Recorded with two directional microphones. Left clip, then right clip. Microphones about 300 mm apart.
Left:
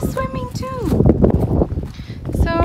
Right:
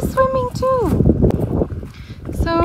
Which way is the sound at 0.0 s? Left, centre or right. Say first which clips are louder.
Right 7 dB; centre.